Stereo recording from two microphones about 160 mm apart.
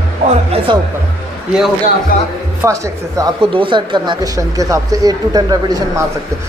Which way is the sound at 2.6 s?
20° right (ahead or behind).